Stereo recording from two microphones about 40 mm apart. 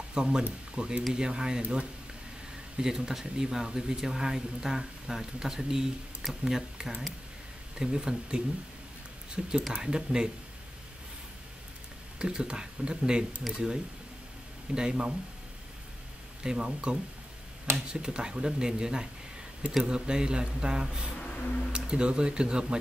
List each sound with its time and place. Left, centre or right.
0.1 s speech: centre
2.8 s speech: centre
12.2 s speech: right
13.5 s speech: centre
14.7 s speech: right
16.4 s speech: right
18.0 s speech: right
21.2 s a sound: left
21.7 s speech: right